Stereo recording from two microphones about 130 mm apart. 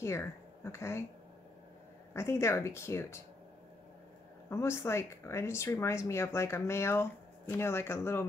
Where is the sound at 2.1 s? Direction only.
20° left (ahead or behind).